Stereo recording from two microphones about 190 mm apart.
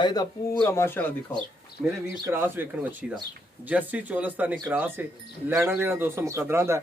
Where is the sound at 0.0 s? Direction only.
20° left (ahead or behind); by 1.9 s centre (ahead or behind).